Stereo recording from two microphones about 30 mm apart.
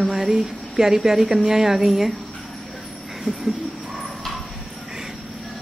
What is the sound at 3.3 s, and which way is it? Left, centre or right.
Speech, centre.